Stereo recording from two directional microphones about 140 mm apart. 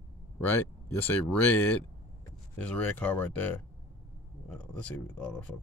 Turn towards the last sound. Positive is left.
turn(degrees=10)  # may be behind; listen again after turning